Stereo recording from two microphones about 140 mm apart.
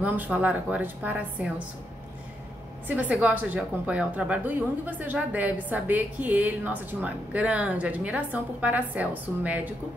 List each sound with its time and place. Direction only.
0.0 s a woman's voice: 10° right (ahead or behind)
2.9 s a woman's voice: 10° right (ahead or behind)